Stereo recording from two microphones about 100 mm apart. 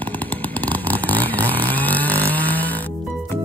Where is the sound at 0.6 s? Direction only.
15° left (ahead or behind).